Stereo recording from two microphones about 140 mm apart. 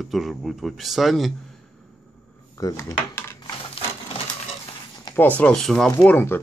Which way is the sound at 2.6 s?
25° left (ahead or behind).